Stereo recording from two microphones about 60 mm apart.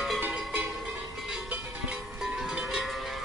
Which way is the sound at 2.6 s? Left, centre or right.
Centre.